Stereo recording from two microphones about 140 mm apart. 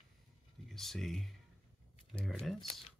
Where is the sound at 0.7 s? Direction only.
Centre (ahead or behind).